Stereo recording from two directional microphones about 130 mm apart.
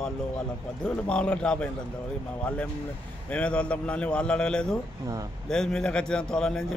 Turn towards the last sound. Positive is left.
turn(degrees=5)  # may be behind; listen again after turning